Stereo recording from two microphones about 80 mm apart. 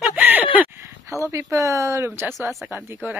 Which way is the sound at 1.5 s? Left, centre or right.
Right.